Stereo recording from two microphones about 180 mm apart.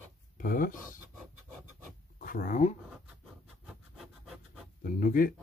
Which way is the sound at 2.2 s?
50° left (ahead or behind).